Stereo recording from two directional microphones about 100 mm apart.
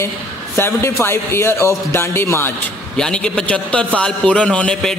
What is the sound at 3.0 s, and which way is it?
A man's voice, 10° left (ahead or behind).